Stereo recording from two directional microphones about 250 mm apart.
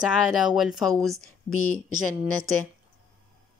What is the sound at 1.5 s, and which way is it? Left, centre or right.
Speech, left.